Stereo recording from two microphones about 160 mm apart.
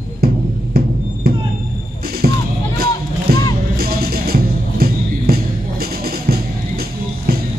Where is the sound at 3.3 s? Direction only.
75° right (ahead or behind).